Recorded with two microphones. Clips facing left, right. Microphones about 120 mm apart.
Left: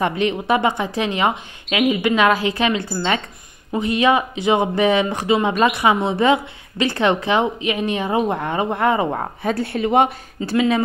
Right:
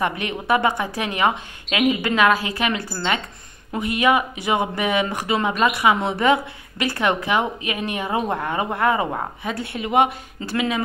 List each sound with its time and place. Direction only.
0.0 s a woman's voice: 25° left (ahead or behind)